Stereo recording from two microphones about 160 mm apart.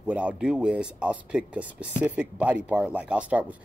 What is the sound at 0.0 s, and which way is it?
Speech, 5° right (ahead or behind).